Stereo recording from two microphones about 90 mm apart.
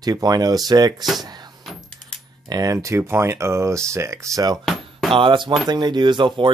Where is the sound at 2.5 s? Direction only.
40° right (ahead or behind).